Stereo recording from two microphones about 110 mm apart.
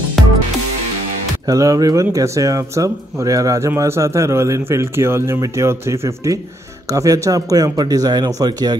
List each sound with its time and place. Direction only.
1.5 s a man's voice: 30° right (ahead or behind)